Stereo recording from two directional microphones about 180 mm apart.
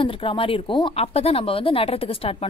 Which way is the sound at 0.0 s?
30° left (ahead or behind).